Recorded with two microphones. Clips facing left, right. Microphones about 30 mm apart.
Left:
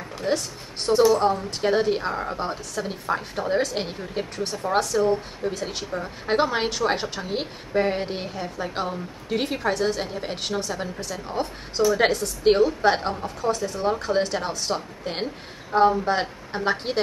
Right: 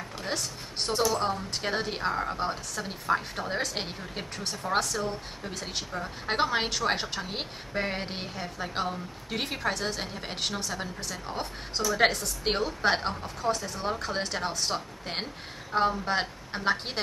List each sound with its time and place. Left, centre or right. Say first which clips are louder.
0.3 s a woman's voice: left 9 dB; centre